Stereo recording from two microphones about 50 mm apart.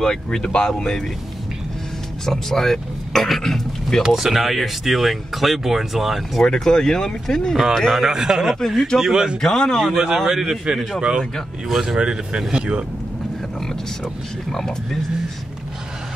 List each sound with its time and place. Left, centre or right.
0.0 s speech: centre
2.2 s speech: centre
4.0 s speech: centre
6.4 s speech: centre
7.5 s a man's voice: centre
8.5 s speech: centre
9.0 s a man's voice: centre
9.4 s speech: centre
10.1 s a man's voice: centre
11.7 s a man's voice: centre
12.0 s a man's voice: right
14.5 s speech: centre